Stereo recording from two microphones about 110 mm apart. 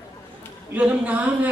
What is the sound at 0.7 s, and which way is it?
Speech, 10° right (ahead or behind).